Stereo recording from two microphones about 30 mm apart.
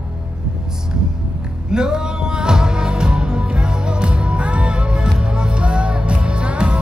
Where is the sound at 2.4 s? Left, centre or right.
Right.